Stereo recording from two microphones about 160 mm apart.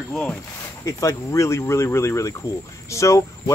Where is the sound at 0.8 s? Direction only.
20° left (ahead or behind).